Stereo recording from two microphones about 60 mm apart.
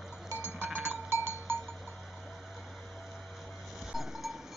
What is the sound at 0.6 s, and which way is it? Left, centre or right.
Cowbell, right.